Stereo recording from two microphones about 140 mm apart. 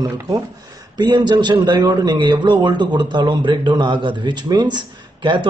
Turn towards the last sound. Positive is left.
turn(degrees=-35)  # may be behind; listen again after turning